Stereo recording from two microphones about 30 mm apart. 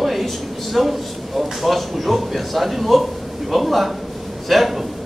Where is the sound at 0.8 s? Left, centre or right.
Centre.